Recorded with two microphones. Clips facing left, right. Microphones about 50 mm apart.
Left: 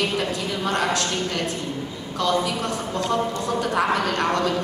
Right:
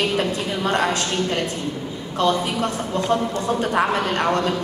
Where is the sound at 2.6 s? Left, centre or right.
Right.